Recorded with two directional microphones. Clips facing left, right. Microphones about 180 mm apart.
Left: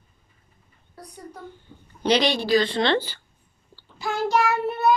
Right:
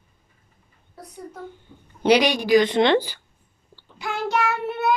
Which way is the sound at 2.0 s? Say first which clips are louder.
Right 3 dB; 10° right (ahead or behind).